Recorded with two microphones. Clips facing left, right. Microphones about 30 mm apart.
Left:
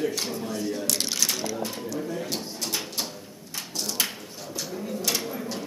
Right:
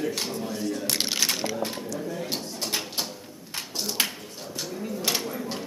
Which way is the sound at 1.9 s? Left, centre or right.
Centre.